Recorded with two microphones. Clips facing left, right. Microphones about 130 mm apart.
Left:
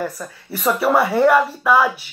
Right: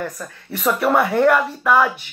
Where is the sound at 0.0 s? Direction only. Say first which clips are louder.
Left 2 dB; 5° left (ahead or behind).